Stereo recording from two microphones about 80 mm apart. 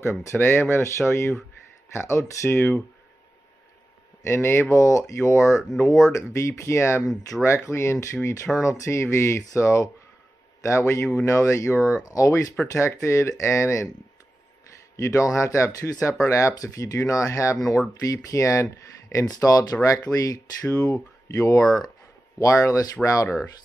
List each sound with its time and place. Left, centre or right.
0.0 s speech: left
4.2 s speech: left
7.0 s speech: centre
7.4 s speech: left
12.5 s speech: left
15.0 s speech: left
19.3 s speech: left